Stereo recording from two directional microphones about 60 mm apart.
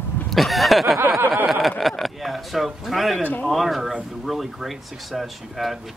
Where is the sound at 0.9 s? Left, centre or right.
Right.